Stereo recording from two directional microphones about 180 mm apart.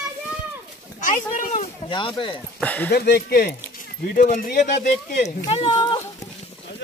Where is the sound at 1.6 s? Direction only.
25° left (ahead or behind).